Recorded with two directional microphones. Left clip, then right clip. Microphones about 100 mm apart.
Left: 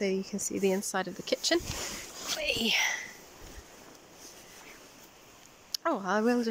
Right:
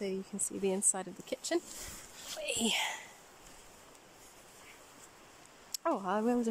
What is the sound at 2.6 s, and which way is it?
Speech, 25° right (ahead or behind).